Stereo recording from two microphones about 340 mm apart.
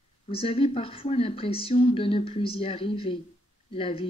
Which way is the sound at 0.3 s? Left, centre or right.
Centre.